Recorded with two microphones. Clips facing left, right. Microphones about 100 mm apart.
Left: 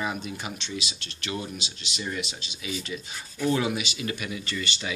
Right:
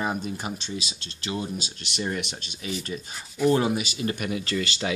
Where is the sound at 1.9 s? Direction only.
55° right (ahead or behind); by 4.1 s 40° right (ahead or behind).